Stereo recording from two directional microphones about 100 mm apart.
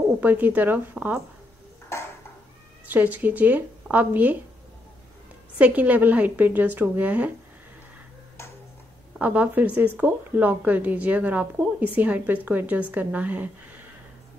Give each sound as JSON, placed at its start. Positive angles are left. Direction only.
{"t": 0.2, "sound": "speech", "side_deg": -15}
{"t": 2.9, "sound": "speech", "side_deg": -15}
{"t": 5.6, "sound": "speech", "side_deg": -15}
{"t": 9.2, "sound": "speech", "side_deg": -15}